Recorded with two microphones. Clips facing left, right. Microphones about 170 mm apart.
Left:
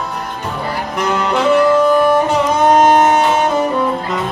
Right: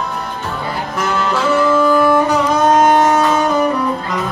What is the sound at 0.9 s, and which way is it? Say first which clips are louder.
Music: left 2 dB; 20° left (ahead or behind).